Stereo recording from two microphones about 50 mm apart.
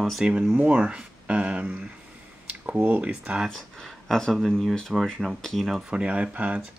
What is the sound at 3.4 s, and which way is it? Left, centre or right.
Speech, centre.